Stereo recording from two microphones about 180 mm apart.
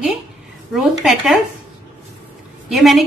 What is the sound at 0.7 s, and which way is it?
Speech, centre (ahead or behind).